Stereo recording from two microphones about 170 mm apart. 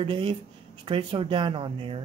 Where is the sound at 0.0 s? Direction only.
30° right (ahead or behind).